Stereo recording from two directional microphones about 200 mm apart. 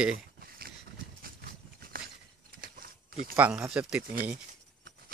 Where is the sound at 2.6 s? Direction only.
45° right (ahead or behind).